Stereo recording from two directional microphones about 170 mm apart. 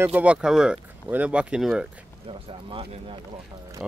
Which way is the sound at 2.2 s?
35° right (ahead or behind).